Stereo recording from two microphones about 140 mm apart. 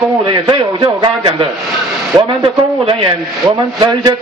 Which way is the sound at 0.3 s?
35° right (ahead or behind).